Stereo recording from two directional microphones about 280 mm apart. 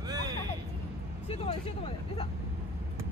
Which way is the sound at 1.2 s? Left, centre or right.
Left.